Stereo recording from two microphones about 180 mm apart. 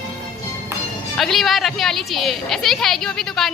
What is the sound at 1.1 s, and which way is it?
A woman's voice, centre (ahead or behind).